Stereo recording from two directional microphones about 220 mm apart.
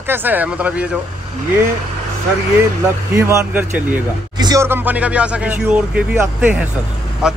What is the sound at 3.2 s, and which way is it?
Speech, 10° right (ahead or behind).